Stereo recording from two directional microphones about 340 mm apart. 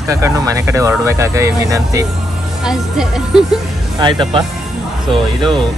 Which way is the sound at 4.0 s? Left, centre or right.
Centre.